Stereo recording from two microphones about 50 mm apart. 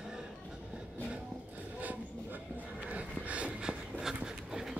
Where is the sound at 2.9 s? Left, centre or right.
Right.